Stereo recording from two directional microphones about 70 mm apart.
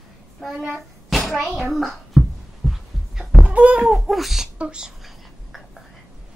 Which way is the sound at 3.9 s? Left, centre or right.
Centre.